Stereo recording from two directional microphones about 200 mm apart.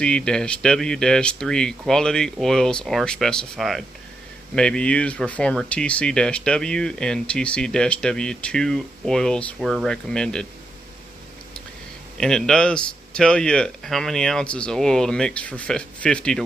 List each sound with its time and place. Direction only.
0.0 s speech: 5° left (ahead or behind)
12.2 s speech: 5° left (ahead or behind)